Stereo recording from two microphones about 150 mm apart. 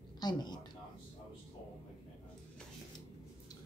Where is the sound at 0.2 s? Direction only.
30° left (ahead or behind).